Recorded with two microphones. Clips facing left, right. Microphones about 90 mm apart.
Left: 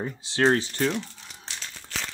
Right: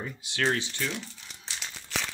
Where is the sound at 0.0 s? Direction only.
30° left (ahead or behind).